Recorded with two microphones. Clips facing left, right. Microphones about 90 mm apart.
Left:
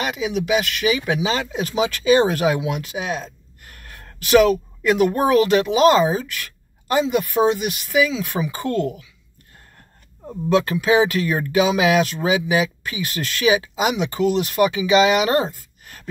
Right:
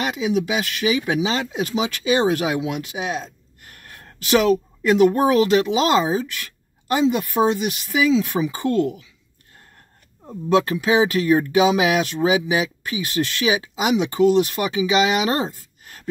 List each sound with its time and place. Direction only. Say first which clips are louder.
0.0 s speech: right 2 dB; 25° right (ahead or behind)
10.5 s speech: even; 25° right (ahead or behind)